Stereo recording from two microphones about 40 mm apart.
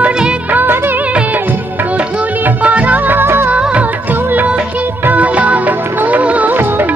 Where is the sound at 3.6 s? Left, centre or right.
Right.